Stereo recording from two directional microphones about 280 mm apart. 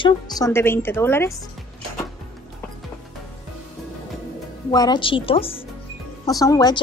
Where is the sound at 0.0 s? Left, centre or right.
Centre.